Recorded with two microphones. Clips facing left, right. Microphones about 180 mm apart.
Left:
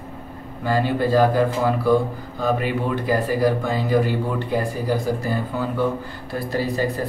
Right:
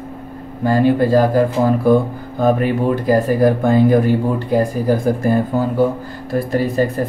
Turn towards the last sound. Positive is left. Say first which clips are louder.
# right 6 dB
turn(degrees=-50)  # may be behind; listen again after turning